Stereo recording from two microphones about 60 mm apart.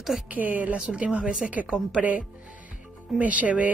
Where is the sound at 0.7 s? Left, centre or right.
Centre.